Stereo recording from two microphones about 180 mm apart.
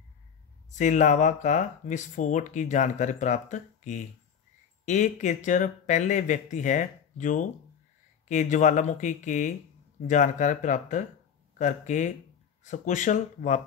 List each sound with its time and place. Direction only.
0.7 s speech: 45° left (ahead or behind)